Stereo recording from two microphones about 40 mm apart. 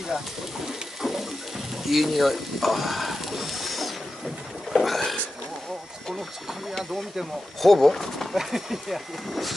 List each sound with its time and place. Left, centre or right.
1.0 s a sound: centre
4.7 s boat: centre
6.8 s speech: centre
7.6 s speech: centre
8.4 s speech: centre